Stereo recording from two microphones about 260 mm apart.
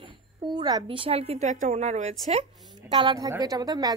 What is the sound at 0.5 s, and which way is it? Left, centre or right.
A woman's voice, centre.